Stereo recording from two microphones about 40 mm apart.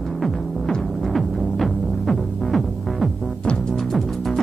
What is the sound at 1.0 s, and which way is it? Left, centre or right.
Music, centre.